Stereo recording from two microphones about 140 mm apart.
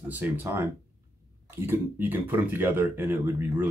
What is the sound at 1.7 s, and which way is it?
Speech, 15° right (ahead or behind).